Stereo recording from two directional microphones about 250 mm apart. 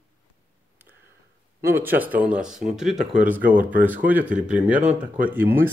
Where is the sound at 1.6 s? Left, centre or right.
Centre.